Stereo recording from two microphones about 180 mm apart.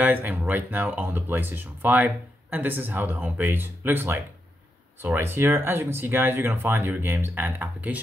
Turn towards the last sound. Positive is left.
turn(degrees=-10)  # may be behind; listen again after turning